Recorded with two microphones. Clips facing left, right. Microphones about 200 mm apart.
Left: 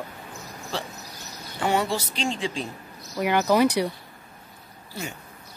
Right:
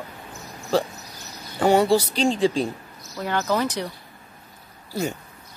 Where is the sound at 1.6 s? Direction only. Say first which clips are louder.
Right 7 dB; 35° right (ahead or behind).